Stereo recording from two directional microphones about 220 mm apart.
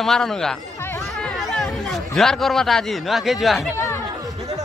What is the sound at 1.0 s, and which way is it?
Chatter, centre (ahead or behind).